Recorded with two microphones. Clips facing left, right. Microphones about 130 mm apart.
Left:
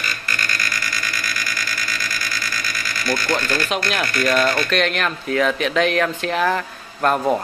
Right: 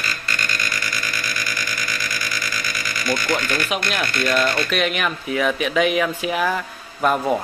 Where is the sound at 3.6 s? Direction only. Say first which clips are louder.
Left 1 dB; 5° right (ahead or behind).